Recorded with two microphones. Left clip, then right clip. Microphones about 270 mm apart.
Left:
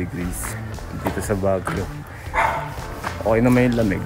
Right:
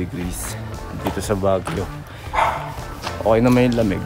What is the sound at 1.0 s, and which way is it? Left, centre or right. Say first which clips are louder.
Speech: right 1 dB; centre.